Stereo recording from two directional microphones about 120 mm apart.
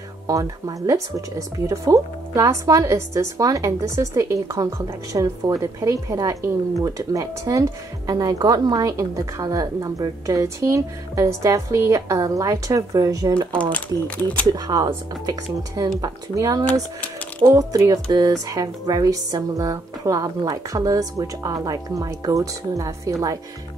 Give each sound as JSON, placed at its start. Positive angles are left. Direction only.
{"t": 0.3, "sound": "speech", "side_deg": -30}
{"t": 13.5, "sound": "speech", "side_deg": 10}
{"t": 14.5, "sound": "speech", "side_deg": -30}